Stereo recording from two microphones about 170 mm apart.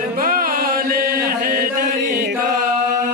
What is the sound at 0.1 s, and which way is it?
Chant, 55° right (ahead or behind).